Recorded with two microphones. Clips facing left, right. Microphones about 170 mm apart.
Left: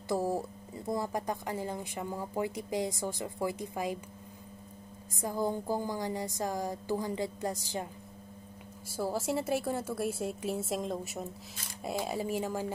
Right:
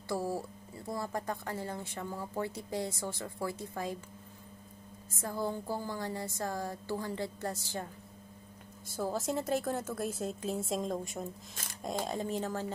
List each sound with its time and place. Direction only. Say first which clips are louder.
0.1 s speech: left 3 dB; 20° left (ahead or behind)
5.2 s speech: left 3 dB; 15° left (ahead or behind)
8.9 s speech: left 2 dB; 10° left (ahead or behind)